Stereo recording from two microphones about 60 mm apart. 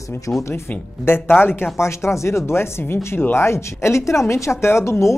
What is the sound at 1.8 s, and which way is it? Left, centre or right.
Speech, left.